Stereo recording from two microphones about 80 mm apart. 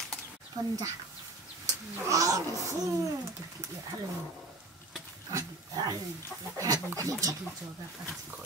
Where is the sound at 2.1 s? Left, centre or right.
Right.